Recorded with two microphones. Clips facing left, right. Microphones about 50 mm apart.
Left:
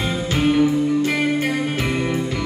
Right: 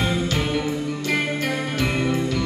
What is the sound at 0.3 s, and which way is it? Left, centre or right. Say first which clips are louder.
Music: left 6 dB; left.